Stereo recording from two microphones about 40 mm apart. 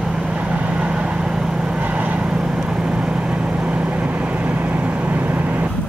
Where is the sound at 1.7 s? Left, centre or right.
Right.